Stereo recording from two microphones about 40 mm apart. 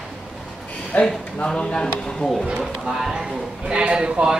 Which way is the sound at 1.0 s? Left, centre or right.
Centre.